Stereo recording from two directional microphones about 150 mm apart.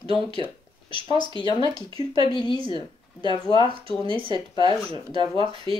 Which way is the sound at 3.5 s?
35° right (ahead or behind).